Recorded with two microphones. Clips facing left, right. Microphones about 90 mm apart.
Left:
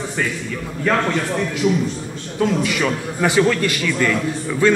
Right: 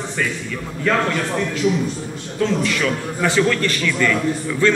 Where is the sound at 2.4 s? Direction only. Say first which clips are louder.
Left 1 dB; 10° left (ahead or behind).